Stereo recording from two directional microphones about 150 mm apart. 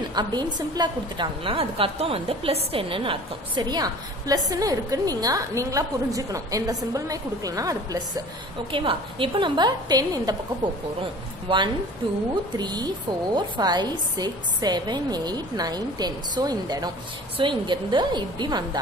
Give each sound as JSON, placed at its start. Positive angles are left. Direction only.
{"t": 0.1, "sound": "a woman's voice", "side_deg": -30}
{"t": 8.7, "sound": "a woman's voice", "side_deg": -35}
{"t": 11.4, "sound": "a woman's voice", "side_deg": -30}